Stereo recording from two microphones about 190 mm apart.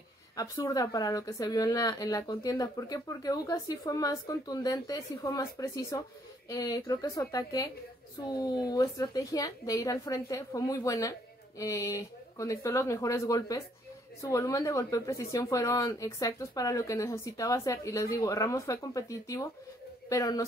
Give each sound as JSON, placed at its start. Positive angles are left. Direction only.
{"t": 0.4, "sound": "a woman's voice", "side_deg": 15}